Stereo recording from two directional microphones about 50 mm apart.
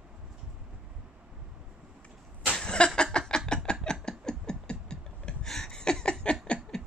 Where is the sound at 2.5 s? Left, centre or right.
Centre.